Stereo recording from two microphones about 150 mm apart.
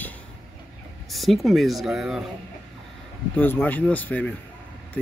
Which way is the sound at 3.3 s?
10° left (ahead or behind).